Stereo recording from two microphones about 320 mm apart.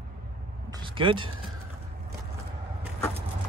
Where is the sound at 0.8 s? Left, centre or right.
Centre.